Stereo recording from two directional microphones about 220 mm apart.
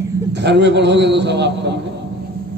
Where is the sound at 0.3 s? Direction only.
50° right (ahead or behind).